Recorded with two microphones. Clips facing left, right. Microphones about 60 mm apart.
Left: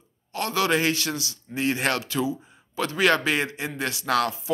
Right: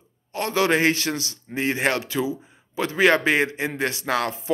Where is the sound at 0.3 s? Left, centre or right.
Right.